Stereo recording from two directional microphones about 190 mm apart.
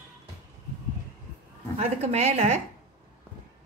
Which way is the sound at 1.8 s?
35° right (ahead or behind).